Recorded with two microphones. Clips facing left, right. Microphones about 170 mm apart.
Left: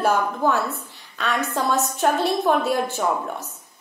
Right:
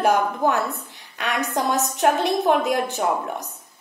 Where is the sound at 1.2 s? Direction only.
15° right (ahead or behind).